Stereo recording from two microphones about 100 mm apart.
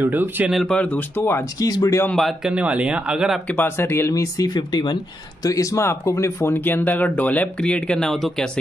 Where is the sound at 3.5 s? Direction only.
20° left (ahead or behind); by 5.0 s 45° left (ahead or behind).